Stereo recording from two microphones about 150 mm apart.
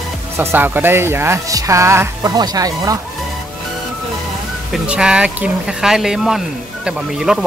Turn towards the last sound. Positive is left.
turn(degrees=-5)  # may be behind; listen again after turning